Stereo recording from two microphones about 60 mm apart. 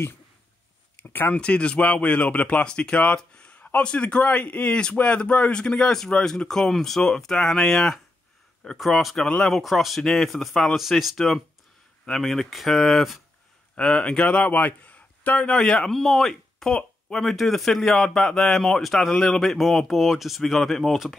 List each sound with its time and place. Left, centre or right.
1.0 s a sound: left
1.3 s speech: centre
13.7 s a man's voice: centre